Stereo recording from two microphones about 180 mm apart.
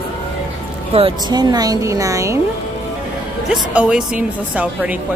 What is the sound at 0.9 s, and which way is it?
A woman's voice, 25° right (ahead or behind).